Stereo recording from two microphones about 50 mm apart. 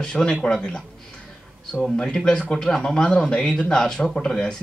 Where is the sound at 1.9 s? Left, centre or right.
Centre.